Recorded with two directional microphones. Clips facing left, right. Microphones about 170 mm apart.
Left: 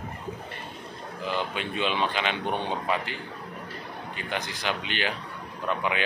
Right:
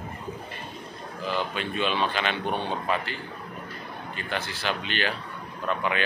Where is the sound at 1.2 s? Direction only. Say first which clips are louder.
Right 1 dB; 15° left (ahead or behind).